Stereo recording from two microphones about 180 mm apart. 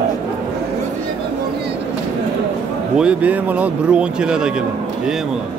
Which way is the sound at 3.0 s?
5° right (ahead or behind).